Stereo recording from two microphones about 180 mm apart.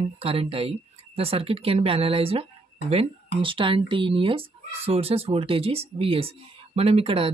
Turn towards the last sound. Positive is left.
turn(degrees=-30)  # may be behind; listen again after turning